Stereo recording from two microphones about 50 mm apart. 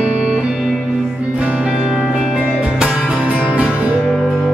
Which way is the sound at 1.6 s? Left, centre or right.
Centre.